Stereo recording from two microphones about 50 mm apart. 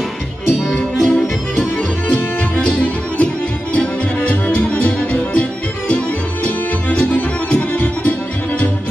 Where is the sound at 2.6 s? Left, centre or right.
Left.